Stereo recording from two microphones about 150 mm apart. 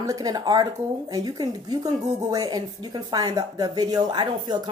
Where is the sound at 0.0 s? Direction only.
25° right (ahead or behind).